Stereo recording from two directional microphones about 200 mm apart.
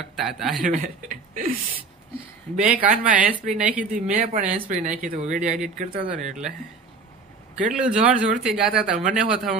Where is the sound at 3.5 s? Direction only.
5° right (ahead or behind).